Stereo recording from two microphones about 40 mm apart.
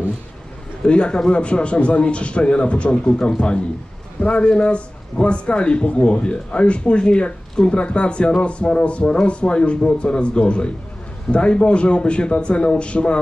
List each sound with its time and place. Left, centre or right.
0.8 s a man's voice: left